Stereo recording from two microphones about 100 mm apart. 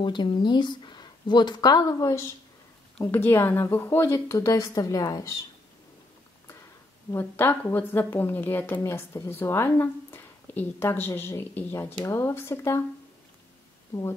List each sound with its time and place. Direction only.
0.0 s speech: 50° left (ahead or behind); by 2.2 s 35° left (ahead or behind)
3.0 s a woman's voice: 25° left (ahead or behind)
7.1 s a woman's voice: 25° left (ahead or behind)
13.9 s speech: 35° left (ahead or behind)